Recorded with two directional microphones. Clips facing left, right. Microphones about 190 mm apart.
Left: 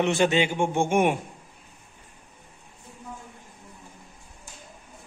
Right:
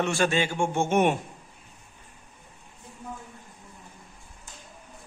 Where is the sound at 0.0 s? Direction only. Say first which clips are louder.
Left 3 dB; 20° left (ahead or behind).